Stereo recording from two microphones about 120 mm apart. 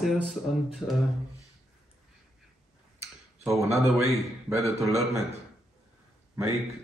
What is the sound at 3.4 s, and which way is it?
Speech, 25° right (ahead or behind).